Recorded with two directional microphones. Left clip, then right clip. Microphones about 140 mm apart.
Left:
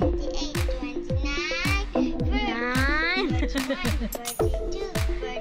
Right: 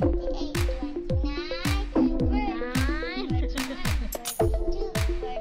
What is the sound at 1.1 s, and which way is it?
Music, 5° right (ahead or behind).